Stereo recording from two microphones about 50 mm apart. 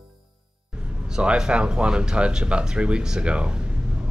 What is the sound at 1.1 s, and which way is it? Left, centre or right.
Speech, centre.